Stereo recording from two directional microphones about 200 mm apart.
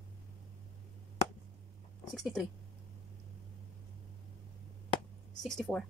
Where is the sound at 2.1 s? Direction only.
Centre (ahead or behind).